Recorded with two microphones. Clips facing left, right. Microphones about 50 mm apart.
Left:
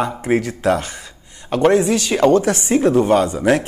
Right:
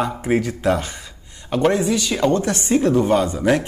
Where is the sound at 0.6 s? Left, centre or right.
Centre.